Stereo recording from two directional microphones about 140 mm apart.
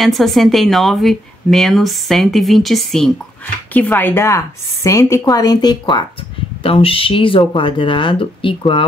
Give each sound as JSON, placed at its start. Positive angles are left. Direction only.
{"t": 0.0, "sound": "speech", "side_deg": 0}
{"t": 3.7, "sound": "a woman's voice", "side_deg": 10}
{"t": 6.6, "sound": "speech", "side_deg": 40}